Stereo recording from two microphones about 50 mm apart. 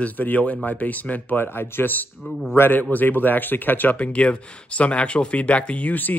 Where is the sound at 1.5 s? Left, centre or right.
Left.